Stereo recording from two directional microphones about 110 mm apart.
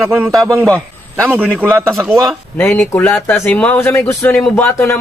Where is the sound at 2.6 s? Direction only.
15° left (ahead or behind).